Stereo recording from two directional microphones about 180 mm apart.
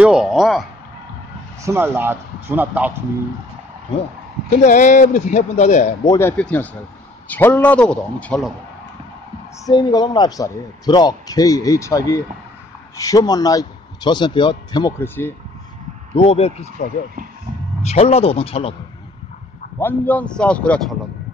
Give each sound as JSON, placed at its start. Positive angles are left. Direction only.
{"t": 0.0, "sound": "a man's voice", "side_deg": -5}
{"t": 1.7, "sound": "speech", "side_deg": -10}
{"t": 4.6, "sound": "speech", "side_deg": 45}
{"t": 6.0, "sound": "a man's voice", "side_deg": 15}
{"t": 9.7, "sound": "a man's voice", "side_deg": 20}
{"t": 16.2, "sound": "speech", "side_deg": 35}
{"t": 19.8, "sound": "a man's voice", "side_deg": 10}